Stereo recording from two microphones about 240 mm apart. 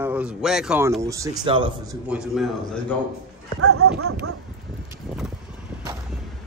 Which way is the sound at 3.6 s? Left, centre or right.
Right.